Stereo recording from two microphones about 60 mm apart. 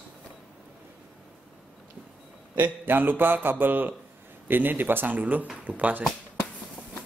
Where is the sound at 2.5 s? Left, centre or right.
Right.